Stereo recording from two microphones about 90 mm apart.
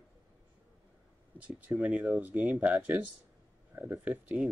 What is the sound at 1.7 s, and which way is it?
Speech, 10° right (ahead or behind).